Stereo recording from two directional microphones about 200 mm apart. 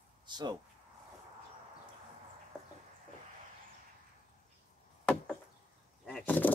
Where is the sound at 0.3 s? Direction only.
20° right (ahead or behind).